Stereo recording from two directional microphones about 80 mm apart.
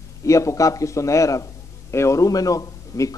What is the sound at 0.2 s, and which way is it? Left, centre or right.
A man's voice, left.